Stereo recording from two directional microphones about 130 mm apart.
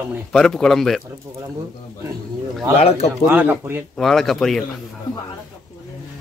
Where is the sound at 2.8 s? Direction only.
50° left (ahead or behind).